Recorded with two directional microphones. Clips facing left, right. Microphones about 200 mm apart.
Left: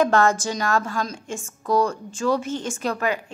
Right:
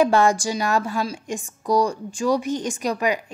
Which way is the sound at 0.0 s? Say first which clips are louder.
Right 1 dB; 15° right (ahead or behind).